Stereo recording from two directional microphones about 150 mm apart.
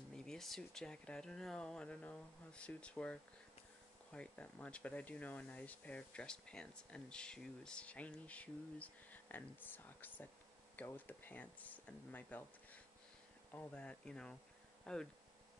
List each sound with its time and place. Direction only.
0.1 s speech: 5° left (ahead or behind)